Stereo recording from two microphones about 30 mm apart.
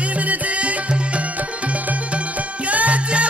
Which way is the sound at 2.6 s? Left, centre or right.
Right.